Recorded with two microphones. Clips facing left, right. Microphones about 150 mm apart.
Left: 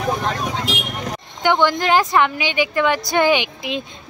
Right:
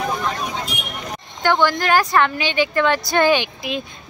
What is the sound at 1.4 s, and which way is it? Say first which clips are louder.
A woman's voice: left 1 dB; 20° left (ahead or behind).